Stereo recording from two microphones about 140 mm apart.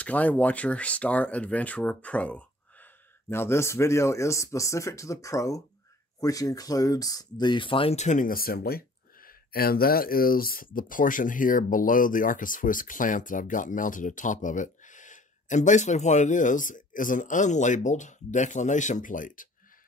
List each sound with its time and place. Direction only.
0.0 s speech: 10° left (ahead or behind); by 8.0 s 40° left (ahead or behind)
8.0 s speech: 65° left (ahead or behind)